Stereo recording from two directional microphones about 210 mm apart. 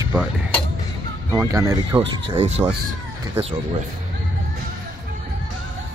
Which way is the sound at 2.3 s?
30° right (ahead or behind).